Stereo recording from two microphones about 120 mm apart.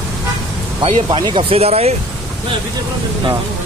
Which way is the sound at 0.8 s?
45° right (ahead or behind).